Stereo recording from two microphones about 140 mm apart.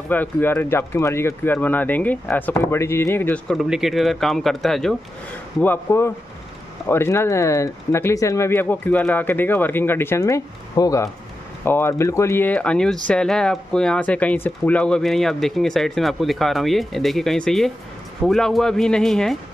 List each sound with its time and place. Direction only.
0.1 s speech: 15° left (ahead or behind)
3.5 s speech: 5° right (ahead or behind)
5.6 s speech: 15° left (ahead or behind)